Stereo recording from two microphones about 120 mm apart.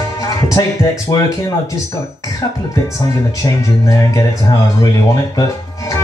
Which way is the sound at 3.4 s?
30° left (ahead or behind).